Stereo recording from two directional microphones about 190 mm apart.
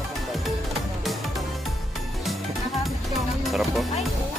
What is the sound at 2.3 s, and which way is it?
Music, centre (ahead or behind).